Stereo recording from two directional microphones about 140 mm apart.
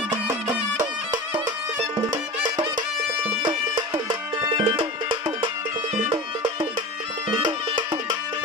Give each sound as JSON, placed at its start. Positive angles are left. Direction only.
{"t": 0.1, "sound": "music", "side_deg": -20}
{"t": 6.0, "sound": "music", "side_deg": -35}